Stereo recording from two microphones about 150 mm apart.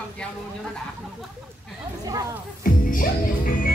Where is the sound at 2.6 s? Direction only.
70° left (ahead or behind).